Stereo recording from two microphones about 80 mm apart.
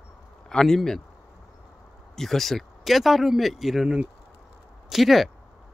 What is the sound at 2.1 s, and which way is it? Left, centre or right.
Speech, centre.